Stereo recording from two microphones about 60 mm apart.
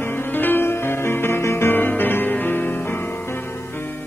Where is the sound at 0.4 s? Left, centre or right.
Left.